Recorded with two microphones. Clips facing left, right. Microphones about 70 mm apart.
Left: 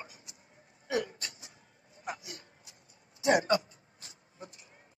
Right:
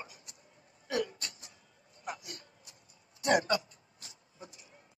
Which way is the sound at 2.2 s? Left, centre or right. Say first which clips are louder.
Left 1 dB; right.